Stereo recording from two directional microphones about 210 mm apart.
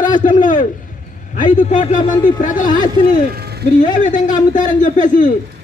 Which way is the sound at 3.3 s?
50° right (ahead or behind).